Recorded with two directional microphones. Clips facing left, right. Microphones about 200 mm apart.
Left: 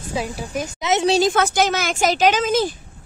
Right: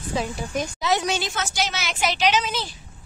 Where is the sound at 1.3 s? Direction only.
50° left (ahead or behind).